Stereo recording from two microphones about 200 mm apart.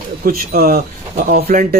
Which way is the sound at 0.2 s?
50° right (ahead or behind).